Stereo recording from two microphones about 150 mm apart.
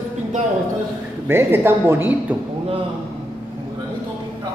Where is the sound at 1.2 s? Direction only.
15° right (ahead or behind).